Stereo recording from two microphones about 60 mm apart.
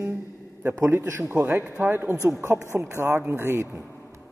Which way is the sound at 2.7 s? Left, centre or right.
Right.